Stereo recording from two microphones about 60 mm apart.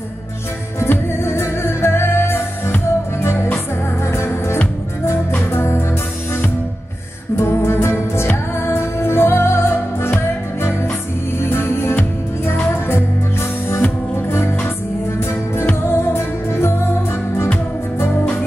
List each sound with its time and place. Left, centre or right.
0.8 s music: left
5.5 s music: left
7.3 s music: left
11.4 s music: left
15.8 s music: left